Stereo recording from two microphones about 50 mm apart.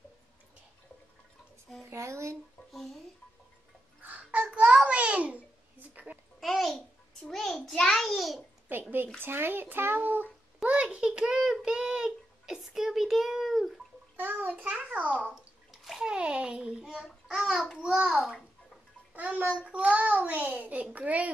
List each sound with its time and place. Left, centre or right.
1.9 s speech: right
2.7 s a child's voice: centre
4.0 s babbling: right
6.1 s a child's voice: right
6.4 s babbling: centre
7.2 s a child's voice: centre
8.1 s a child's voice: centre
8.7 s a child's voice: right
10.6 s a child's voice: right; by 13.7 s centre
14.1 s a child's voice: right
15.7 s bathtub: centre
16.0 s a child's voice: centre
17.7 s a child's voice: right
19.1 s a child's voice: right